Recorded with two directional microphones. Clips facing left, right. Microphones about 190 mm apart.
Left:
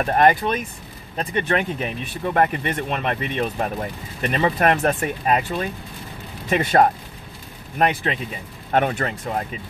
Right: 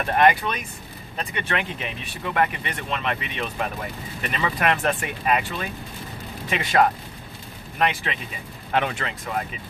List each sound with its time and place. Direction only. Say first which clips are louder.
0.0 s speech: left 2 dB; 40° left (ahead or behind)